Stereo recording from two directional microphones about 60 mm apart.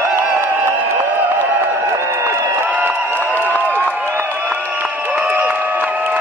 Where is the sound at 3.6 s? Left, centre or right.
Left.